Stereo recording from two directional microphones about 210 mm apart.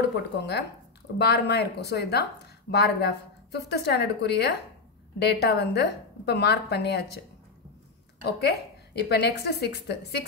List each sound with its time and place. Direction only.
0.1 s a woman's voice: 55° left (ahead or behind)
8.2 s a woman's voice: 50° left (ahead or behind)